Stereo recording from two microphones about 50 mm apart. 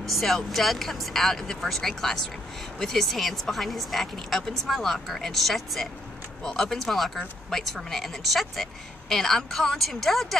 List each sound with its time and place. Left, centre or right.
0.0 s speech: centre